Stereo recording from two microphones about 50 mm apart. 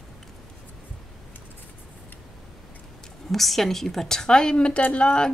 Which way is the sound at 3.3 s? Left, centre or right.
Centre.